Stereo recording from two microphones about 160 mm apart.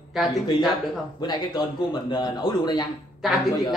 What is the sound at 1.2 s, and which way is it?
Speech, 30° left (ahead or behind).